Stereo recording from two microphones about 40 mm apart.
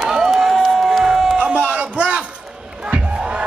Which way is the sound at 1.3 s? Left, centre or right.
Right.